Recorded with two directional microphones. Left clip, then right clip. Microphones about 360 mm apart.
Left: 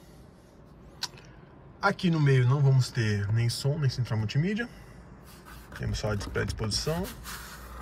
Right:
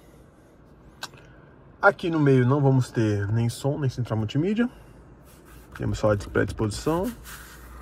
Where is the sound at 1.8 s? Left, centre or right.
Centre.